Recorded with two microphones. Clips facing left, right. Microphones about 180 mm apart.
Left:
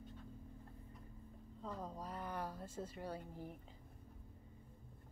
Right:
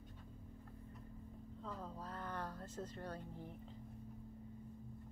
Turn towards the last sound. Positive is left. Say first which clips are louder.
# left 1 dB
turn(degrees=10)  # may be behind; listen again after turning